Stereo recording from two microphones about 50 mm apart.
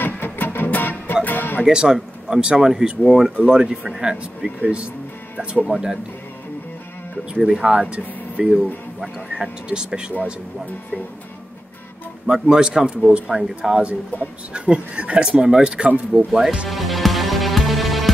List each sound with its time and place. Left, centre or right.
0.0 s music: left
1.6 s speech: centre
5.7 s speech: centre
7.4 s speech: centre
12.3 s speech: centre
16.3 s speech: centre
16.6 s music: centre